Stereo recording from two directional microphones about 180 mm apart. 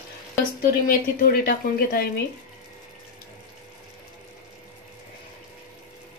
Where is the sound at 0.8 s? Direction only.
55° left (ahead or behind).